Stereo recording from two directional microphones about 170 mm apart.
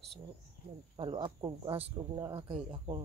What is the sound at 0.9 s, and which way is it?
Speech, 30° right (ahead or behind).